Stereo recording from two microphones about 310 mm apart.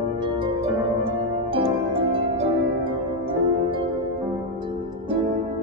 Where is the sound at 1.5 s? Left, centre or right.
Centre.